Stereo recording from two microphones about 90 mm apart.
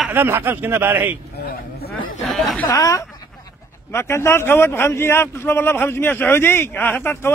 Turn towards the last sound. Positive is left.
turn(degrees=25)  # may be behind; listen again after turning